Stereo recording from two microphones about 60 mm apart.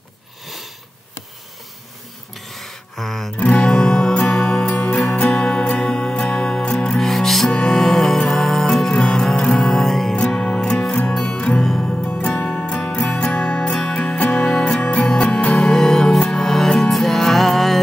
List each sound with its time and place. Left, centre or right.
2.3 s a sound: centre
3.3 s music: centre
3.7 s music: centre
11.6 s music: centre
12.4 s music: centre